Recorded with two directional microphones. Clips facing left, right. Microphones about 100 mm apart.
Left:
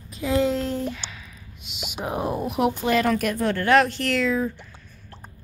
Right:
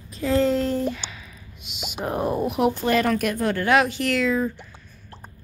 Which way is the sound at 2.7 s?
5° left (ahead or behind).